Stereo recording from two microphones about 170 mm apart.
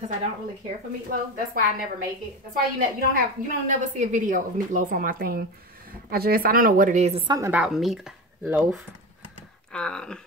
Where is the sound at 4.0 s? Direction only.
50° right (ahead or behind).